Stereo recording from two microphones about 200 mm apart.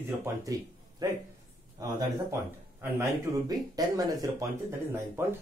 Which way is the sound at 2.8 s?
15° right (ahead or behind).